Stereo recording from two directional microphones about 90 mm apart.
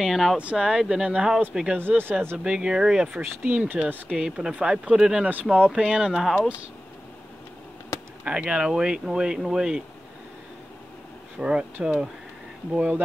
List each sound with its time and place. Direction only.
0.0 s speech: centre (ahead or behind)
0.4 s speech: 10° right (ahead or behind)
1.8 s speech: 25° right (ahead or behind)
2.3 s speech: 10° right (ahead or behind)
3.2 s speech: 20° right (ahead or behind); by 6.5 s centre (ahead or behind)
8.2 s speech: 10° right (ahead or behind)
11.3 s speech: 10° right (ahead or behind)